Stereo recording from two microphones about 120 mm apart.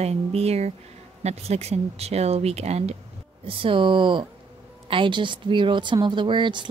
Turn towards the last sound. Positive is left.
turn(degrees=-40)  # may be behind; listen again after turning